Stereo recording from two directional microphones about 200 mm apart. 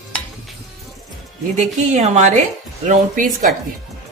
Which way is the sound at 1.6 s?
35° right (ahead or behind).